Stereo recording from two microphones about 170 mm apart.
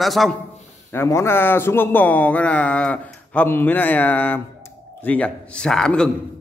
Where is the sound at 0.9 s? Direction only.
15° left (ahead or behind).